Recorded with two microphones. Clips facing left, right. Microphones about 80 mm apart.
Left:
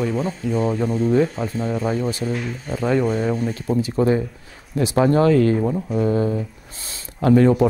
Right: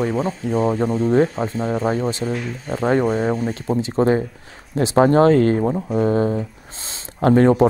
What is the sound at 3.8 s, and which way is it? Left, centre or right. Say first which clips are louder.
Speech: right 2 dB; right.